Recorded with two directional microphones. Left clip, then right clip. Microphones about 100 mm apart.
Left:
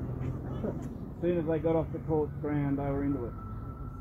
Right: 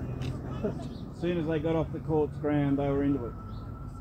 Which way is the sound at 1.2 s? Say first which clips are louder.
Left 1 dB; 30° right (ahead or behind).